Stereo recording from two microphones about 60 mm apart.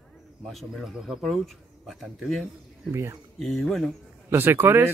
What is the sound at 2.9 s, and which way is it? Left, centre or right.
Speech, right.